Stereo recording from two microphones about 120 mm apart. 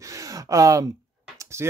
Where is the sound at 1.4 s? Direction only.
25° right (ahead or behind).